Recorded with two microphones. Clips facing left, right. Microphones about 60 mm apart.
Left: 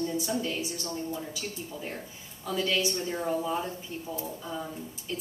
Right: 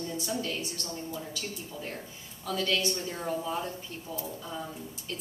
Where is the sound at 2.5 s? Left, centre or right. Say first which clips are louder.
Left 1 dB; centre.